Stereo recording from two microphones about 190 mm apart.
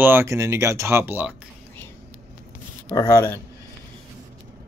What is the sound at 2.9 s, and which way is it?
Speech, 15° left (ahead or behind).